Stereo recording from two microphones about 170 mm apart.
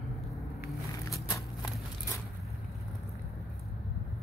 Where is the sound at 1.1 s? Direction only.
20° left (ahead or behind).